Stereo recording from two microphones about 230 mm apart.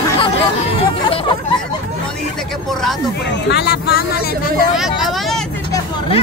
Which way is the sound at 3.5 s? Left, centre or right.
Left.